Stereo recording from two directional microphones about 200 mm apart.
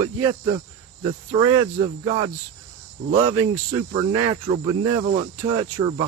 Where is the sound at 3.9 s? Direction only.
15° right (ahead or behind).